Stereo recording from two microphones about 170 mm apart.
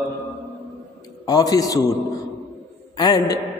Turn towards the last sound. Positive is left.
turn(degrees=25)  # may be behind; listen again after turning